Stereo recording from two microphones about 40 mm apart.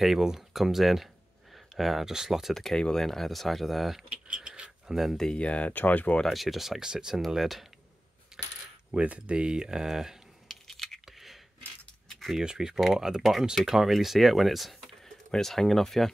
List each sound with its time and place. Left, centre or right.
0.0 s speech: centre
2.7 s speech: centre
4.4 s mechanisms: right
4.8 s speech: centre
5.3 s speech: left
5.7 s speech: left
6.2 s speech: centre
6.8 s speech: centre
7.2 s speech: centre
8.3 s coin: centre
8.9 s speech: right; by 10.1 s centre
10.5 s a sound: centre
11.1 s a sound: centre
12.4 s speech: centre